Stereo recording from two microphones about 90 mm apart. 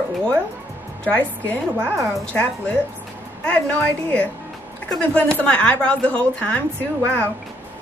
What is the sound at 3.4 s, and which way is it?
Speech, 15° left (ahead or behind).